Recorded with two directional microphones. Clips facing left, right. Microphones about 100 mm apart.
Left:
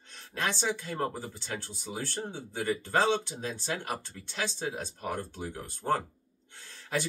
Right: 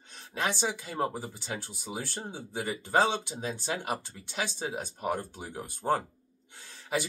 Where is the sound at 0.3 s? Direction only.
10° right (ahead or behind).